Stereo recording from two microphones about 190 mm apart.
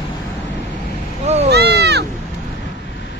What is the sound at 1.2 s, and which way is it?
Cat, 35° right (ahead or behind).